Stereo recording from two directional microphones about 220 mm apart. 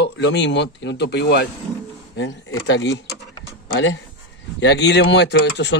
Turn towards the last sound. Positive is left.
turn(degrees=50)  # may be behind; listen again after turning